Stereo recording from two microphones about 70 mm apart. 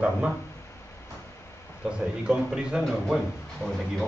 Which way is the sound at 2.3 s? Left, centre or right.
Centre.